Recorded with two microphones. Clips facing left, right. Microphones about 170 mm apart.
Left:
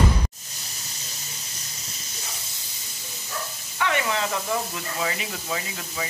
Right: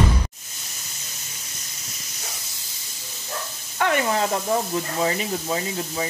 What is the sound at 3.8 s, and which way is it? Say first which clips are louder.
Speech: right 4 dB; 45° right (ahead or behind).